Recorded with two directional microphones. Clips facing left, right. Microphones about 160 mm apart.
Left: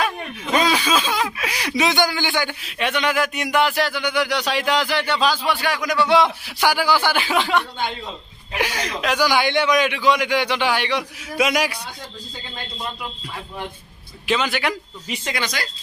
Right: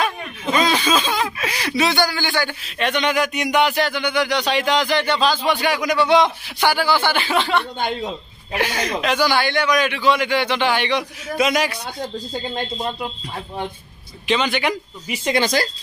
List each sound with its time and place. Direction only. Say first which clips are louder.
0.7 s speech: right 1 dB; 10° left (ahead or behind)
14.2 s a man's voice: right 2 dB; 5° left (ahead or behind)
15.2 s speech: right 9 dB; 30° right (ahead or behind)